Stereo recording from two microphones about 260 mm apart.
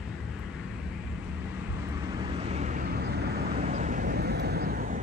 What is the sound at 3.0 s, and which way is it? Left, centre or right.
Vehicle, right.